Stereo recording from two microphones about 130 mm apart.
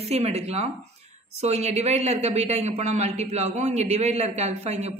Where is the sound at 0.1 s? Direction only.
55° right (ahead or behind).